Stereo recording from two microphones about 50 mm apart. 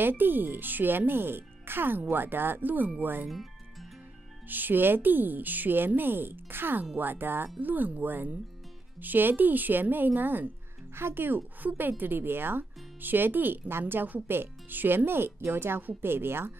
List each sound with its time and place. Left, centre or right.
0.0 s a woman's voice: right
4.5 s a woman's voice: right